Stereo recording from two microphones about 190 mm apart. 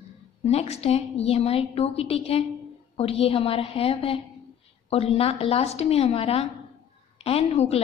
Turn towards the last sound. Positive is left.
turn(degrees=30)  # may be behind; listen again after turning